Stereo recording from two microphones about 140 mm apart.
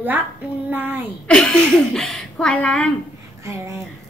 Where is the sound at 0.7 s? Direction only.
15° right (ahead or behind).